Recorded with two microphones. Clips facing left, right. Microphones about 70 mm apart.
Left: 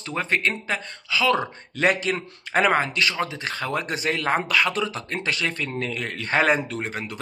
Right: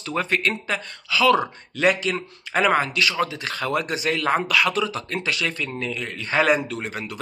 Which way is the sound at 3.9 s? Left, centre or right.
Left.